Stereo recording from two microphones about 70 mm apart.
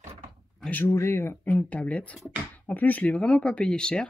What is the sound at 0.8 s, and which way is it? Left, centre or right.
Speech, left.